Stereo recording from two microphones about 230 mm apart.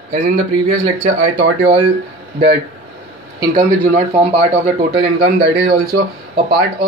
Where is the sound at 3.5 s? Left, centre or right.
Right.